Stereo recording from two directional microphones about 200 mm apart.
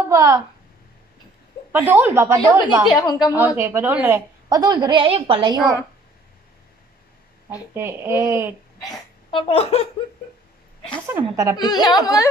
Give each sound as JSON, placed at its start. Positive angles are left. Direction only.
{"t": 0.1, "sound": "a woman's voice", "side_deg": -15}
{"t": 1.7, "sound": "a woman's voice", "side_deg": -10}
{"t": 3.1, "sound": "speech", "side_deg": 20}
{"t": 3.3, "sound": "a woman's voice", "side_deg": -10}
{"t": 7.4, "sound": "a woman's voice", "side_deg": -10}
{"t": 8.8, "sound": "speech", "side_deg": 20}
{"t": 11.1, "sound": "a woman's voice", "side_deg": -15}
{"t": 11.5, "sound": "speech", "side_deg": 20}